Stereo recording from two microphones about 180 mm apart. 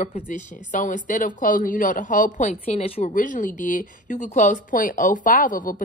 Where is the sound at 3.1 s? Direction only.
45° left (ahead or behind).